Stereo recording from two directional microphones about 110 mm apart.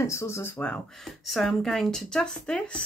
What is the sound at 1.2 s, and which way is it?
Speech, centre (ahead or behind).